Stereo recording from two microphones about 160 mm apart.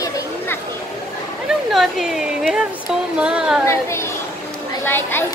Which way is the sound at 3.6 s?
15° left (ahead or behind).